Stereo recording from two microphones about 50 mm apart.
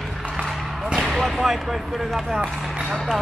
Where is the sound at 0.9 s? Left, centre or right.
Centre.